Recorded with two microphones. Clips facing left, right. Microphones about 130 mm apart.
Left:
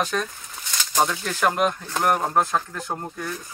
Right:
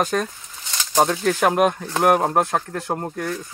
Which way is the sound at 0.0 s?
45° right (ahead or behind).